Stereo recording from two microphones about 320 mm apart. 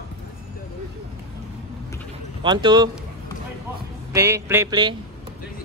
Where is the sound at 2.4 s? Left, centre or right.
Centre.